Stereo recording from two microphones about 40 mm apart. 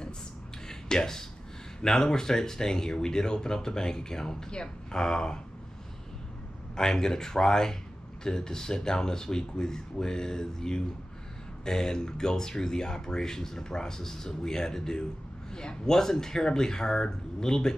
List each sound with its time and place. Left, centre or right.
0.7 s a sound: centre
1.8 s speech: centre
6.7 s speech: centre